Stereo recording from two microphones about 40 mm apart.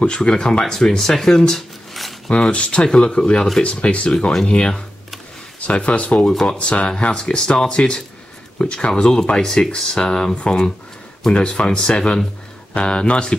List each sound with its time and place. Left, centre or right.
0.0 s speech: left
2.3 s speech: left
11.3 s speech: left